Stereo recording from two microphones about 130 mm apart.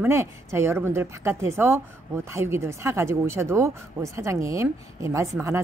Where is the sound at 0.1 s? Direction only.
20° right (ahead or behind).